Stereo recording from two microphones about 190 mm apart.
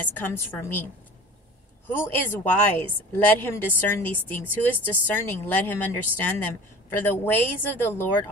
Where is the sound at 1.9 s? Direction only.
10° left (ahead or behind).